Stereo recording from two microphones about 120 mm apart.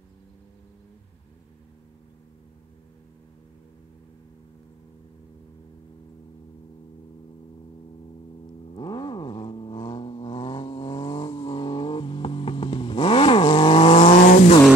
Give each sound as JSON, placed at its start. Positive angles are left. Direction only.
{"t": 8.7, "sound": "vehicle", "side_deg": 40}